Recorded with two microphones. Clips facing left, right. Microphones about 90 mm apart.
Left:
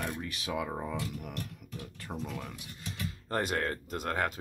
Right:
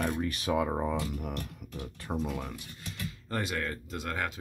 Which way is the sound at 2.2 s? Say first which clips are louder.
Right 4 dB; 10° right (ahead or behind).